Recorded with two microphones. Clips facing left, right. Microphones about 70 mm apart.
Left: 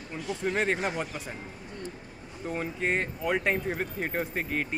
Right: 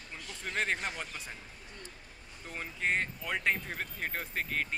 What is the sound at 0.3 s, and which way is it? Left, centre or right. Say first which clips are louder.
Speech: left 6 dB; centre.